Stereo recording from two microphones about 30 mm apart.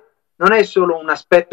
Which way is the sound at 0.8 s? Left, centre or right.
Right.